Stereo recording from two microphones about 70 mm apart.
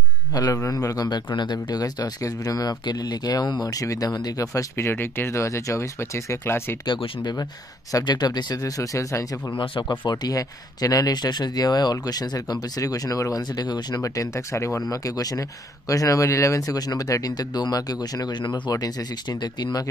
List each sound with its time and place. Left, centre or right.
0.3 s a man's voice: left
4.7 s speech: left
6.9 s speech: left
8.7 s speech: left
9.6 s speech: left
13.4 s speech: left
14.0 s speech: left
14.9 s speech: left